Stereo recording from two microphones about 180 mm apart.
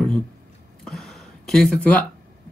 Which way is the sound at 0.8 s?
Centre (ahead or behind).